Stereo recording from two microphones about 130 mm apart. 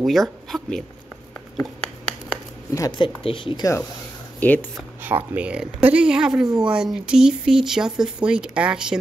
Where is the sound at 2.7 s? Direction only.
30° left (ahead or behind).